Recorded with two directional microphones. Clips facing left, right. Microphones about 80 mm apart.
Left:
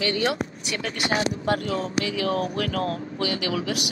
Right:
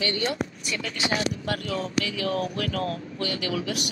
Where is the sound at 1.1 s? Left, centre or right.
Left.